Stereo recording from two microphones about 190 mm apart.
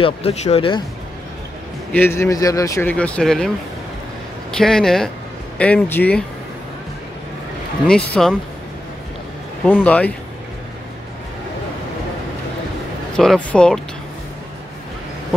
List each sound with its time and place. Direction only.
0.0 s speech: 35° left (ahead or behind)
1.9 s speech: 10° left (ahead or behind)
7.8 s speech: 5° left (ahead or behind)
9.7 s speech: 10° left (ahead or behind)
13.1 s speech: 5° left (ahead or behind)